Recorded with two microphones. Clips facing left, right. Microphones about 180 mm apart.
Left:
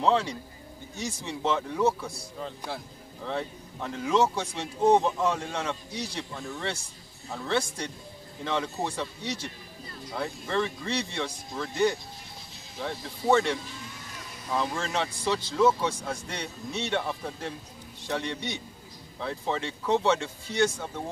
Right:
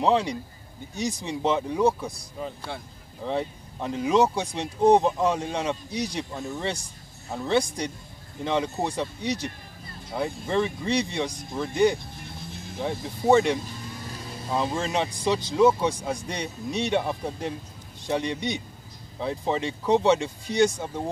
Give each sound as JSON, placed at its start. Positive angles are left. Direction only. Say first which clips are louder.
{"t": 0.0, "sound": "speech", "louder": "right 2 dB", "side_deg": -15}
{"t": 12.2, "sound": "music", "louder": "right 8 dB", "side_deg": -55}
{"t": 13.0, "sound": "speech", "louder": "right 4 dB", "side_deg": -15}
{"t": 14.1, "sound": "speech", "louder": "right 2 dB", "side_deg": -30}